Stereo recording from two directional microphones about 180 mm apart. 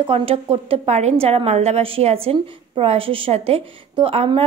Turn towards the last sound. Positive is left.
turn(degrees=-30)  # may be behind; listen again after turning